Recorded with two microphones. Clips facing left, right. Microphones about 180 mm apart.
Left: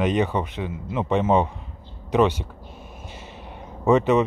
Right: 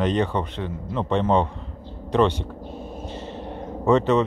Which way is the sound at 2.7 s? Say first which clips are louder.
Right 10 dB; 35° right (ahead or behind).